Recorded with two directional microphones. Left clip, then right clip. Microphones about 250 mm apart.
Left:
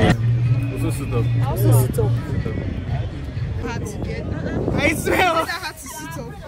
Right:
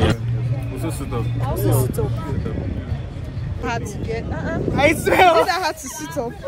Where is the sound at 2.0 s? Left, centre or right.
Centre.